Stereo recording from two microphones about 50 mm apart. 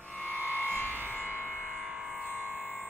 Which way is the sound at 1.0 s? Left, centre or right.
Right.